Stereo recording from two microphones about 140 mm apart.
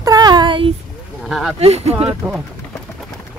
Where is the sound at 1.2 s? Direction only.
Centre (ahead or behind).